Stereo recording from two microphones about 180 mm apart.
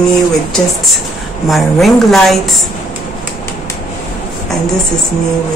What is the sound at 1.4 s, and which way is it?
Speech, centre (ahead or behind).